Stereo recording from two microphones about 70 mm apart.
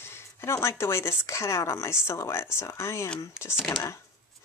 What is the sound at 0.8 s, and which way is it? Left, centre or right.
Speech, left.